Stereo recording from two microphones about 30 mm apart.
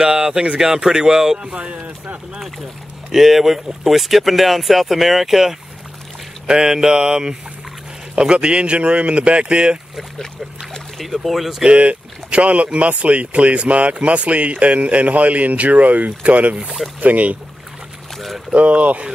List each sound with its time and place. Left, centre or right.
0.0 s speech: right
1.5 s speech: right
3.1 s speech: centre
6.4 s speech: right
11.0 s speech: centre
11.7 s speech: right
18.5 s speech: right